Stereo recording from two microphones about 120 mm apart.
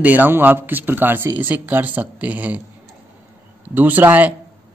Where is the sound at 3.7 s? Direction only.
15° right (ahead or behind).